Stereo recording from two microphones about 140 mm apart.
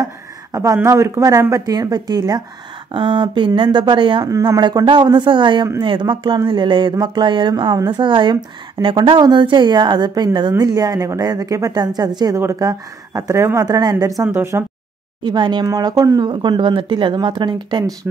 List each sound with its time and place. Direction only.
0.0 s a sound: 25° right (ahead or behind)
0.7 s speech: 20° right (ahead or behind)
15.2 s speech: 30° right (ahead or behind)